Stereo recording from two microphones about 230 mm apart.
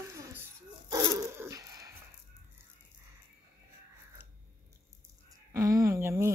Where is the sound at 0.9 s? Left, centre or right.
Centre.